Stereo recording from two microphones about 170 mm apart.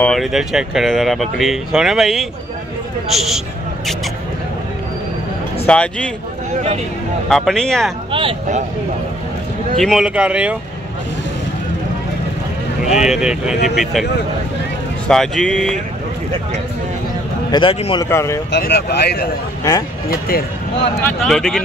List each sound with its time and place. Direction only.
0.0 s speech: centre (ahead or behind)
5.7 s speech: 5° left (ahead or behind)
6.5 s speech: 40° right (ahead or behind)
7.2 s speech: 5° left (ahead or behind)
8.1 s speech: 30° right (ahead or behind)
9.8 s speech: centre (ahead or behind)
12.9 s speech: 5° right (ahead or behind)
15.0 s speech: 5° left (ahead or behind)
17.5 s a man's voice: 30° left (ahead or behind)
18.0 s speech: 15° left (ahead or behind)
18.5 s speech: 75° left (ahead or behind)
21.2 s speech: centre (ahead or behind)